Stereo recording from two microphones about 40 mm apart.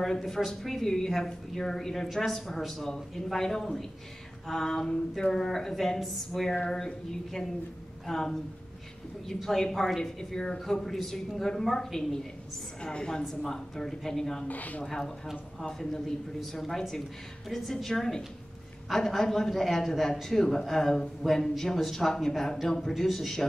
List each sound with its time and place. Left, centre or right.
0.0 s a man's voice: centre
14.5 s speech: left
14.9 s a man's voice: centre
16.5 s a man's voice: centre